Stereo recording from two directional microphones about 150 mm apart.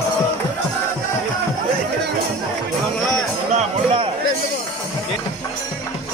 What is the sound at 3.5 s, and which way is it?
Music, 35° right (ahead or behind).